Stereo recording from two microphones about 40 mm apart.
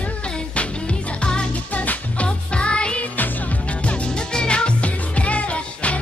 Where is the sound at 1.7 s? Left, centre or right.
Left.